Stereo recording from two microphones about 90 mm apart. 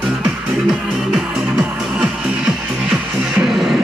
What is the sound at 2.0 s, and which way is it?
Music, 5° right (ahead or behind).